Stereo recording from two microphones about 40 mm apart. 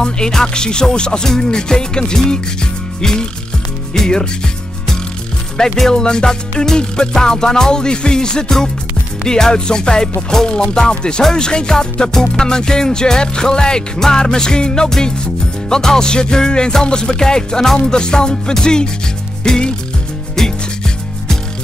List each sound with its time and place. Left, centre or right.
0.0 s music: centre
5.6 s music: centre